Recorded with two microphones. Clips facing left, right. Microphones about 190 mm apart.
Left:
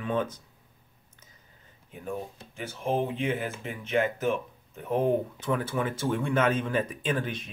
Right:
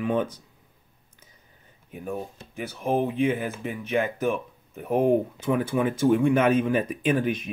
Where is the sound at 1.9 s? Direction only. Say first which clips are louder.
Right 3 dB; 10° right (ahead or behind).